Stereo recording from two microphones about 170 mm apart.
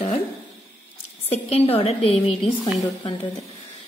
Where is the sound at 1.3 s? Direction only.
35° left (ahead or behind).